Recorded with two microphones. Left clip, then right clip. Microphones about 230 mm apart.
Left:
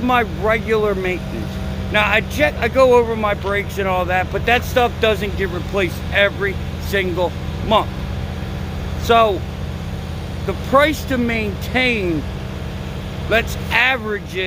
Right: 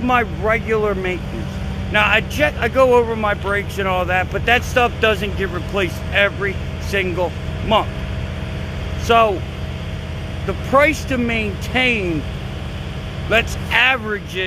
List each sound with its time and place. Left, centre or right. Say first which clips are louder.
0.0 s speech: even; centre
9.0 s speech: even; centre
10.7 s speech: even; centre
13.3 s speech: right 1 dB; centre